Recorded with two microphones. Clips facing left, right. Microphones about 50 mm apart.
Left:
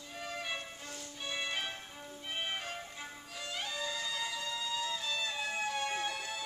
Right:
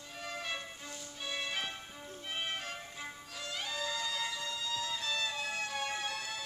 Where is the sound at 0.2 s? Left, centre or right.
Centre.